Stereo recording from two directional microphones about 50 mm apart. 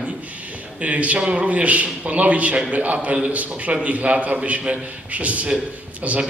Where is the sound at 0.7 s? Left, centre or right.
Right.